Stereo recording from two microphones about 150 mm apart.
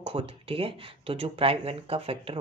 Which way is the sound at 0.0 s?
40° right (ahead or behind).